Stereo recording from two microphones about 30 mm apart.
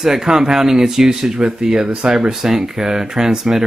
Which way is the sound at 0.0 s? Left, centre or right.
Centre.